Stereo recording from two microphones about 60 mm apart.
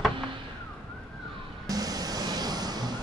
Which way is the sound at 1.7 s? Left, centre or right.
Right.